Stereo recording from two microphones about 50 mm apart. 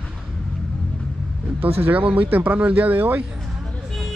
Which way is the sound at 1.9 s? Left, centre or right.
Right.